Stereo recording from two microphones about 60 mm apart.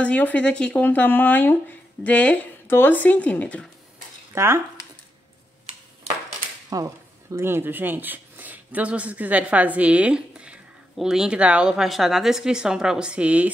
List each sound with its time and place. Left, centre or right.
0.0 s speech: left
2.7 s speech: left
4.3 s speech: right
6.7 s a sound: right
7.3 s speech: right; by 11.9 s centre
11.9 s speech: centre; by 13.5 s right